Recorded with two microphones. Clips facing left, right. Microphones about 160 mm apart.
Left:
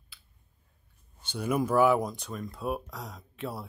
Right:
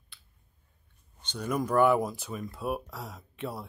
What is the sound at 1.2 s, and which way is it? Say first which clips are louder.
Speech: left 2 dB; 10° left (ahead or behind).